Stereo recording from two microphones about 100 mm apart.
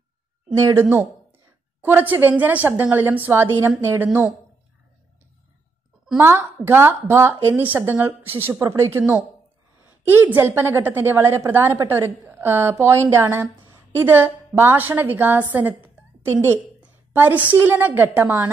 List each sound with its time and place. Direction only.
0.6 s a woman's voice: 30° right (ahead or behind)
6.1 s a woman's voice: 25° right (ahead or behind)